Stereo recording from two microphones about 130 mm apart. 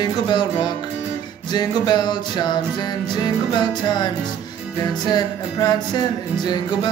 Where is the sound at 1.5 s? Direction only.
35° left (ahead or behind).